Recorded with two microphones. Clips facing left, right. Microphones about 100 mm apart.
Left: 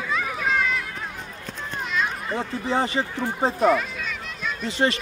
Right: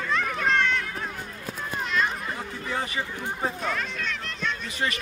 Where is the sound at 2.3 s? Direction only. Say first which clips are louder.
Left 6 dB; 30° left (ahead or behind).